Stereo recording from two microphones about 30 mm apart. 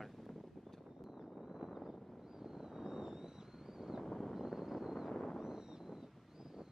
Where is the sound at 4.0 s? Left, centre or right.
Centre.